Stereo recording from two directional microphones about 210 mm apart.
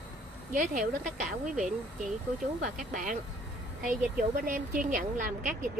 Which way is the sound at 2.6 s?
40° right (ahead or behind).